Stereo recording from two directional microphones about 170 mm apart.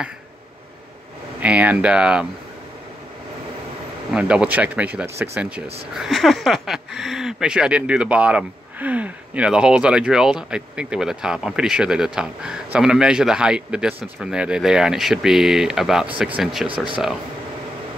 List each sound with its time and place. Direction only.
1.4 s speech: 10° right (ahead or behind)
4.1 s speech: 5° right (ahead or behind)
5.9 s speech: centre (ahead or behind)
16.6 s speech: 30° right (ahead or behind)